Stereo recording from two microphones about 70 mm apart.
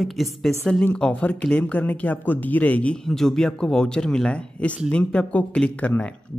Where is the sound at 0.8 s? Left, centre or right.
Centre.